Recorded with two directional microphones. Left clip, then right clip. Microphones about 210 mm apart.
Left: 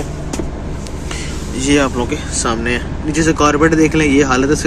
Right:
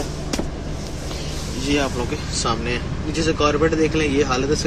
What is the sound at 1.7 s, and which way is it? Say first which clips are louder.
Speech: left 7 dB; 15° left (ahead or behind).